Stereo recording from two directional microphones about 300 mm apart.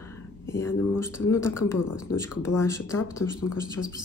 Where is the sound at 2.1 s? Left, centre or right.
Left.